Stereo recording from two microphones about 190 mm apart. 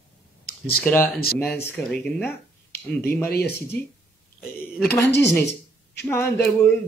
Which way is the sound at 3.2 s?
55° left (ahead or behind).